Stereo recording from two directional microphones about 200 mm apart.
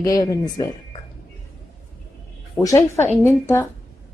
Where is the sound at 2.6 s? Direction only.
15° left (ahead or behind).